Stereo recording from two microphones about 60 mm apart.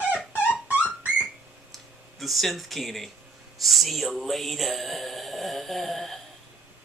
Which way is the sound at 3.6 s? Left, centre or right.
Centre.